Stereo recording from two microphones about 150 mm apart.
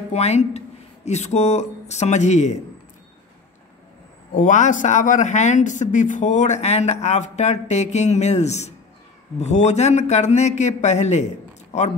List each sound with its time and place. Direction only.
0.1 s speech: 45° left (ahead or behind)
4.4 s speech: 60° left (ahead or behind)